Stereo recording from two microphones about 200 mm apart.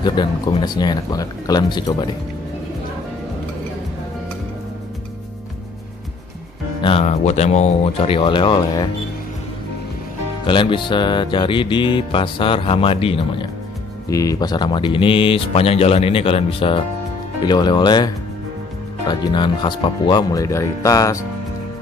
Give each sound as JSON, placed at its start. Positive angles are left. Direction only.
{"t": 0.0, "sound": "music", "side_deg": 20}
{"t": 6.8, "sound": "music", "side_deg": 30}
{"t": 10.4, "sound": "music", "side_deg": 25}